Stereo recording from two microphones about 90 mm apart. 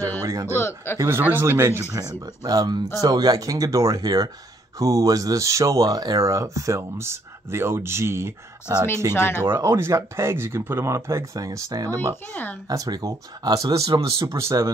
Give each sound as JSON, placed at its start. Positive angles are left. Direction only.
{"t": 0.2, "sound": "speech", "side_deg": -35}
{"t": 0.6, "sound": "speech", "side_deg": 30}
{"t": 1.0, "sound": "speech", "side_deg": -25}
{"t": 2.0, "sound": "speech", "side_deg": -45}
{"t": 9.1, "sound": "speech", "side_deg": 25}
{"t": 9.6, "sound": "speech", "side_deg": -30}
{"t": 12.3, "sound": "speech", "side_deg": 20}
{"t": 12.6, "sound": "speech", "side_deg": -45}
{"t": 14.2, "sound": "speech", "side_deg": -35}